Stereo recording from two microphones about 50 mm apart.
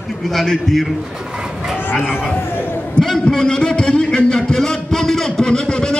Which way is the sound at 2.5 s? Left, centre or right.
Left.